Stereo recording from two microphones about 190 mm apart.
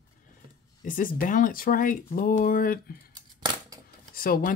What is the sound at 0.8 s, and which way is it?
Speech, 45° left (ahead or behind).